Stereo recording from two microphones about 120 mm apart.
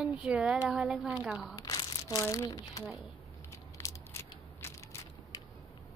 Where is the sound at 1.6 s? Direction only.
30° left (ahead or behind).